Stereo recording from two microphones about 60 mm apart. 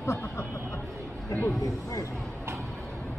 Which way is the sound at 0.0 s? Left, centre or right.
Left.